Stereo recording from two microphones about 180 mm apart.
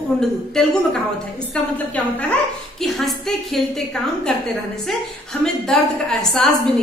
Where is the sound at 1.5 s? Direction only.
5° left (ahead or behind).